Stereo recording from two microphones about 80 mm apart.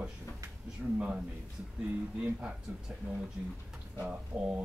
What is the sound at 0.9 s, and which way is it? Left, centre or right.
Speech, centre.